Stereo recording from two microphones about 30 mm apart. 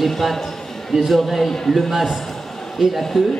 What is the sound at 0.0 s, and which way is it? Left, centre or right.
A man's voice, centre.